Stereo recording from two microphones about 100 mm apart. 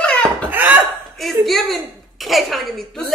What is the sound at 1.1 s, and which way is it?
A woman's voice, centre (ahead or behind).